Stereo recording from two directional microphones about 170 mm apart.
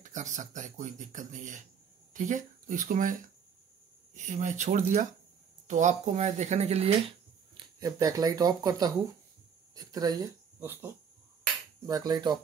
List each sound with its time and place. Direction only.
0.0 s speech: 45° right (ahead or behind)
7.5 s speech: 20° right (ahead or behind)
11.8 s a sound: 25° right (ahead or behind)